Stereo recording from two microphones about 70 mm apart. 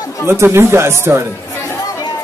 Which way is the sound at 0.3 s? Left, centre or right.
Right.